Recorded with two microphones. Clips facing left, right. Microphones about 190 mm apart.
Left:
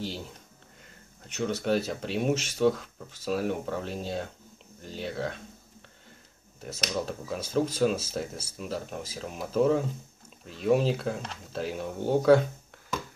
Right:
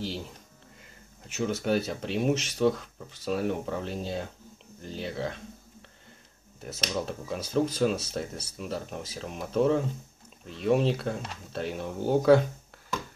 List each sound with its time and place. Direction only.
1.3 s speech: 5° right (ahead or behind)